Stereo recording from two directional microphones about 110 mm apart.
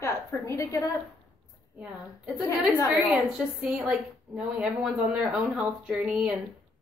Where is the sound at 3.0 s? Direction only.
5° right (ahead or behind).